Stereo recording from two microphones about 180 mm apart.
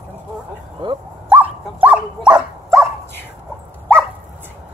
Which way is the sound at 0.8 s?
25° right (ahead or behind).